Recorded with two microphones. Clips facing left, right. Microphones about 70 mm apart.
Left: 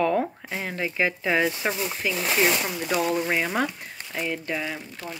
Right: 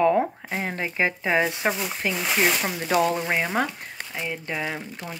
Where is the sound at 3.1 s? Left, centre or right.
Right.